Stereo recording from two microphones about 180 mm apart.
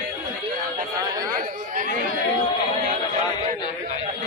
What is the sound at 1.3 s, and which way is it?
Chatter, 50° right (ahead or behind).